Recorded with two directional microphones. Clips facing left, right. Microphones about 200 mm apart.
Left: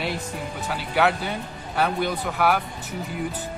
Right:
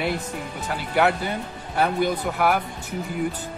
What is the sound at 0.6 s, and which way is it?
Speech, centre (ahead or behind).